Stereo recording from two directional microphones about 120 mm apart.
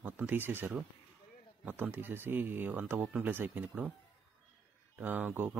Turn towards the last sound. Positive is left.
turn(degrees=-15)  # may be behind; listen again after turning